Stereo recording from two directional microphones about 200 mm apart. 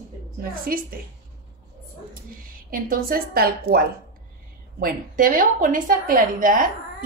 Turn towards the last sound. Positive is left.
turn(degrees=-40)  # may be behind; listen again after turning